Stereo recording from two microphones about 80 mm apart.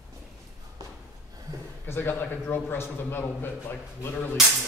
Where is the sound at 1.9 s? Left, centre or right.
Left.